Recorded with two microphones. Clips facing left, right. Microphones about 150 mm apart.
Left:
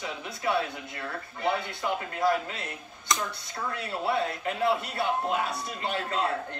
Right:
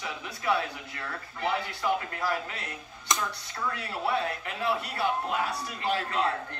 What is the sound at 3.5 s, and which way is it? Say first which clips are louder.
A man's voice: left 2 dB; 25° left (ahead or behind).